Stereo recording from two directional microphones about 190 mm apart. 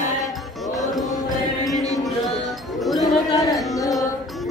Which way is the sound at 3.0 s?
20° left (ahead or behind).